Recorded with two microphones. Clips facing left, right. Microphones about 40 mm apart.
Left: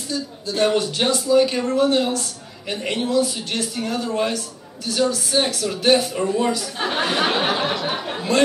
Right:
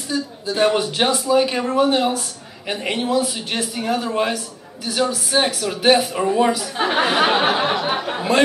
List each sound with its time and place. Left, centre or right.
0.1 s a man's voice: centre